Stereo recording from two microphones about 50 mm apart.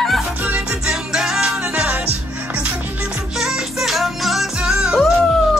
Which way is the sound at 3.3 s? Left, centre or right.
Centre.